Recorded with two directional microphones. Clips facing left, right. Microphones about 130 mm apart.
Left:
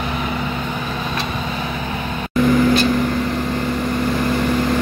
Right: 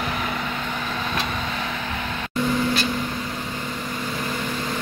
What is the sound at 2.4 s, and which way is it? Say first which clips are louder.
Vehicle: left 8 dB; 90° left.